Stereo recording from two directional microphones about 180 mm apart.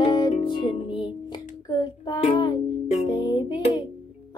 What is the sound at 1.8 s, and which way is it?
Child singing, 25° left (ahead or behind).